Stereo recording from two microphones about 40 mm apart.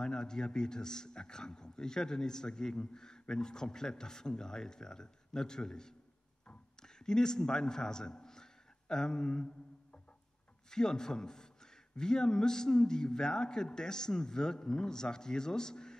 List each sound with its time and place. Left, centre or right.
0.0 s a man's voice: centre
10.7 s a man's voice: centre